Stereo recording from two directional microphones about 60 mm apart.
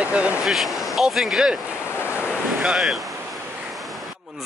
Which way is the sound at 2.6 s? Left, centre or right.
Centre.